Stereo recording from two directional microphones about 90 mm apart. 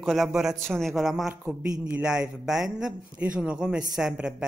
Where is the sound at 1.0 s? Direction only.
5° right (ahead or behind).